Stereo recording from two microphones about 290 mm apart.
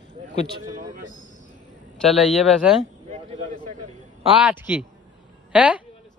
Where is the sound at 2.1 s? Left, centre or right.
Centre.